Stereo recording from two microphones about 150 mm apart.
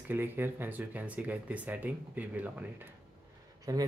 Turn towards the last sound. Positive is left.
turn(degrees=-20)  # may be behind; listen again after turning